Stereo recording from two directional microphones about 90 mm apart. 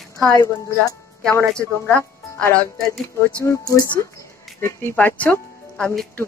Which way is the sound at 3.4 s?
35° left (ahead or behind).